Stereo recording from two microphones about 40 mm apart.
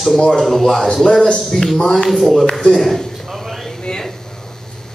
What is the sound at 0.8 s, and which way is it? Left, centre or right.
A man's voice, centre.